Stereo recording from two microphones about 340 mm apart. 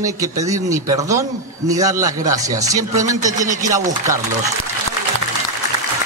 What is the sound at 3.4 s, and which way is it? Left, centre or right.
Speech, right.